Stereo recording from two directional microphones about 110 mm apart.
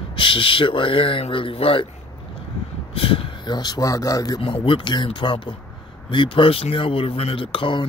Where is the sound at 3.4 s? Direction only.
40° left (ahead or behind).